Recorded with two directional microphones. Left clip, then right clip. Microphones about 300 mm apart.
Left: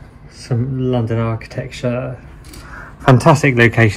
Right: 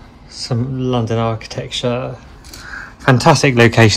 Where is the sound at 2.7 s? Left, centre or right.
Centre.